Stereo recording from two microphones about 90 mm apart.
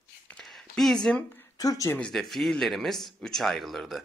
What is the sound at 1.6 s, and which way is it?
Speech, 40° left (ahead or behind).